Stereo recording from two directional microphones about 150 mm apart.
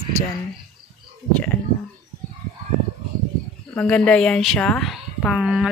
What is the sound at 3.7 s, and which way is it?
A woman's voice, 10° left (ahead or behind).